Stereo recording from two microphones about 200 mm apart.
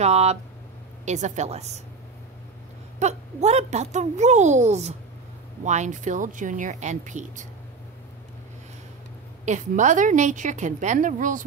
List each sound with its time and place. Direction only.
0.0 s a woman's voice: 30° right (ahead or behind)
3.0 s a woman's voice: 35° right (ahead or behind)
9.4 s a woman's voice: 35° right (ahead or behind)